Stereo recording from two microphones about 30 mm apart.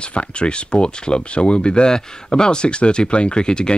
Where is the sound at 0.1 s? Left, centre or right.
Left.